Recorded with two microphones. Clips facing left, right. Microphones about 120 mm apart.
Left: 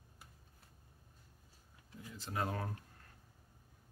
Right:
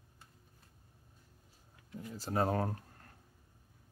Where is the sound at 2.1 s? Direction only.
40° right (ahead or behind).